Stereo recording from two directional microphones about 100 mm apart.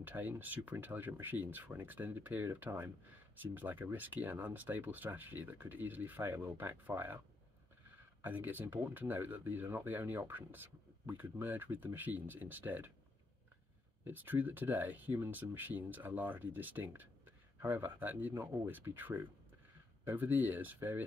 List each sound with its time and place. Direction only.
0.0 s speech: 20° right (ahead or behind)
8.2 s speech: 20° right (ahead or behind)
14.0 s speech: 20° right (ahead or behind)